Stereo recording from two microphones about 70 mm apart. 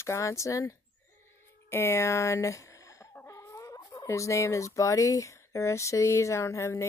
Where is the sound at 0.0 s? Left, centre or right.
Left.